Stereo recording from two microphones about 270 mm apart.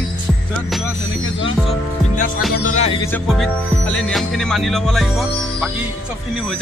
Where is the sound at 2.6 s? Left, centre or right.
Left.